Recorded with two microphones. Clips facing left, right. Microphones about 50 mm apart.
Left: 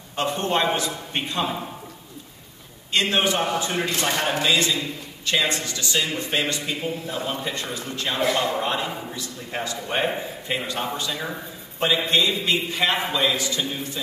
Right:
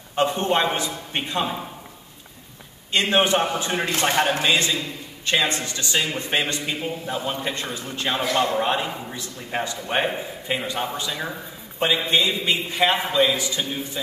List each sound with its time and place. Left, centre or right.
0.1 s a sound: centre
2.9 s speech: right
10.0 s a man's voice: centre
11.9 s a man's voice: centre